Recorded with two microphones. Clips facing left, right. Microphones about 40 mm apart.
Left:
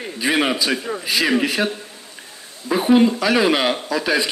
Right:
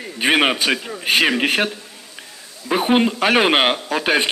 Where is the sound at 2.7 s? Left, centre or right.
Right.